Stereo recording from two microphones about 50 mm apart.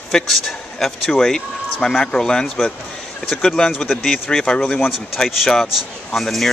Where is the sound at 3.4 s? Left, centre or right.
Centre.